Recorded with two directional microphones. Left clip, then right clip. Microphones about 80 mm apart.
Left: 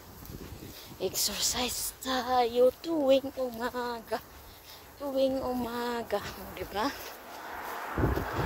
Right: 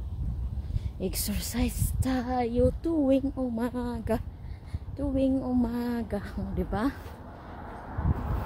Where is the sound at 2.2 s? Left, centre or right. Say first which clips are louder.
Left 3 dB; right.